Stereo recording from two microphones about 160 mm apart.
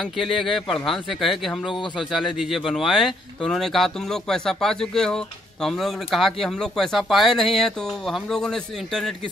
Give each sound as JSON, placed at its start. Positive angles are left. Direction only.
{"t": 0.0, "sound": "speech", "side_deg": 0}